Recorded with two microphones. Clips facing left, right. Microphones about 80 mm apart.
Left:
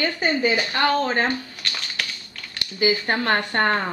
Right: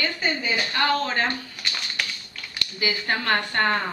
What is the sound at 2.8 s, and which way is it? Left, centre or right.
Speech, left.